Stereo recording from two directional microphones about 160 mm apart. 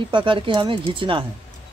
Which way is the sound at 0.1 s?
30° right (ahead or behind).